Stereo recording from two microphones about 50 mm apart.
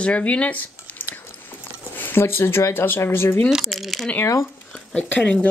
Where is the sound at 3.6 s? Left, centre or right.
Centre.